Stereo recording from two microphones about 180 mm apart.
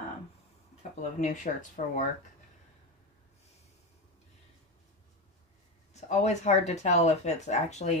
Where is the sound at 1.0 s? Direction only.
40° left (ahead or behind).